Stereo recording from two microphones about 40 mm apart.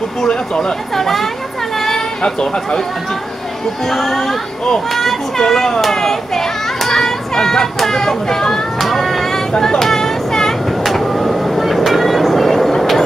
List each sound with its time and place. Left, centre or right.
0.2 s speech: centre
0.9 s speech: centre
1.8 s a sound: centre
2.2 s speech: centre
3.9 s speech: centre
5.4 s a child's voice: centre
8.7 s a sound: centre
9.8 s train: centre
10.9 s vehicle: centre